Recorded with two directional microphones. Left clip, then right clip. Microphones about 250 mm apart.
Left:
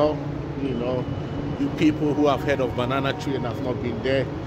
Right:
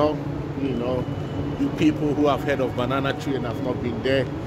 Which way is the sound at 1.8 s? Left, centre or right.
Left.